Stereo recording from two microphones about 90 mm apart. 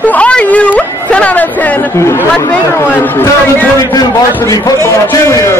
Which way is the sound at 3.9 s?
40° left (ahead or behind).